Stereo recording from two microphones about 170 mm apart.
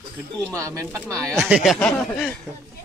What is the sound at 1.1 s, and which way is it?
Speech, 5° left (ahead or behind).